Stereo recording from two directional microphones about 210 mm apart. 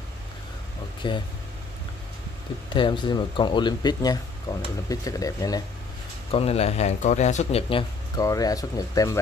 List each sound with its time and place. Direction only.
1.0 s speech: 20° left (ahead or behind)
2.7 s speech: 20° left (ahead or behind)
6.3 s speech: 30° left (ahead or behind)
8.2 s speech: 15° left (ahead or behind)